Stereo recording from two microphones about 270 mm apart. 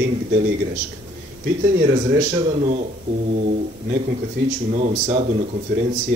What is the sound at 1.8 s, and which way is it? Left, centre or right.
Speech, right.